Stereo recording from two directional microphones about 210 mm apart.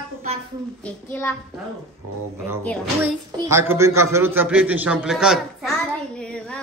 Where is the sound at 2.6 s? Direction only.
5° left (ahead or behind).